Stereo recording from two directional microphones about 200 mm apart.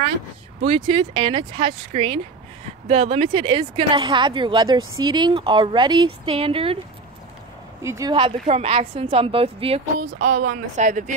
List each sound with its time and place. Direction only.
0.7 s speech: 25° right (ahead or behind)
7.8 s speech: 15° right (ahead or behind)
8.1 s speech: 25° right (ahead or behind)